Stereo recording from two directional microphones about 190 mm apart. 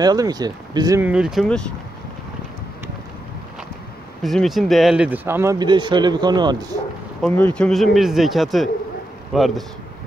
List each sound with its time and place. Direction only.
0.0 s speech: 20° right (ahead or behind)
1.0 s speech: 5° right (ahead or behind)
4.2 s speech: centre (ahead or behind); by 6.8 s 20° right (ahead or behind)
7.2 s speech: 5° left (ahead or behind)